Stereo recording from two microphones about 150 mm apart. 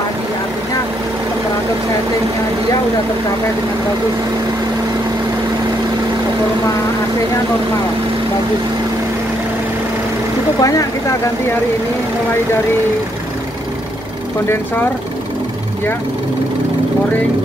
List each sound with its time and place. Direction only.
10.6 s speech: 20° left (ahead or behind)